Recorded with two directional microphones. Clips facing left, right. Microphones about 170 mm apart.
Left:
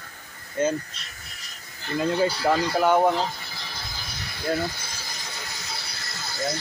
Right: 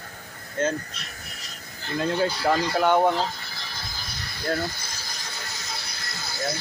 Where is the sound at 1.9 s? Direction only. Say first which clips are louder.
Left 1 dB; 5° left (ahead or behind).